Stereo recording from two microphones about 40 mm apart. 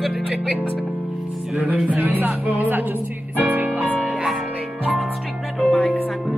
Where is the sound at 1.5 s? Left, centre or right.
Right.